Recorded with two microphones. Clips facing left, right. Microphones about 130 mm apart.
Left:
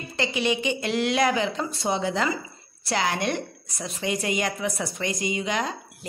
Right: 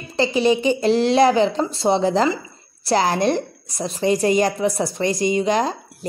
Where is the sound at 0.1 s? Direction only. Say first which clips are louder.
Right 8 dB; 35° right (ahead or behind).